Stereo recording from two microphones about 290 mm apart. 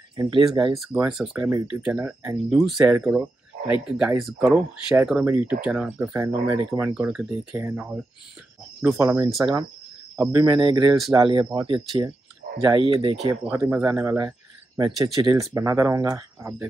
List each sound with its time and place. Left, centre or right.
0.1 s speech: centre
0.9 s speech: centre